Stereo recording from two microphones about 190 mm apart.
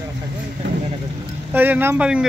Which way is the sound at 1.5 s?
10° right (ahead or behind).